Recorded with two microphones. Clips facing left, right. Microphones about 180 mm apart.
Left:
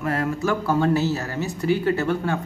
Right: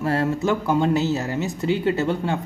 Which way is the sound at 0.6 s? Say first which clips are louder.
Left 2 dB; 20° right (ahead or behind).